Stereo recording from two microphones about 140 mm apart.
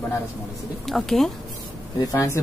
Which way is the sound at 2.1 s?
20° left (ahead or behind).